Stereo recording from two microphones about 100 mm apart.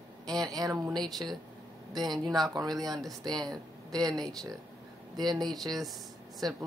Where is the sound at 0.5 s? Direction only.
35° right (ahead or behind).